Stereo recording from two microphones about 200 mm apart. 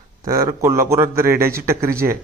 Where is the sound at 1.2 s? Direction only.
45° right (ahead or behind).